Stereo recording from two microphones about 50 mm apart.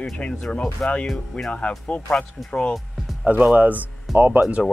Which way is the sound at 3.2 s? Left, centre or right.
Right.